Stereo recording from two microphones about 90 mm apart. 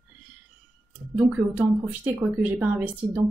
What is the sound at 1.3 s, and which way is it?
Speech, 15° right (ahead or behind).